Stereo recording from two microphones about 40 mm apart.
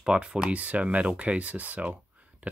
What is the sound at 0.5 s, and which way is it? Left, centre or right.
Speech, right.